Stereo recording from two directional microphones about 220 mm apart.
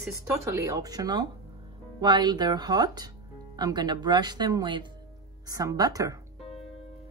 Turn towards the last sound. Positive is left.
turn(degrees=-15)  # may be behind; listen again after turning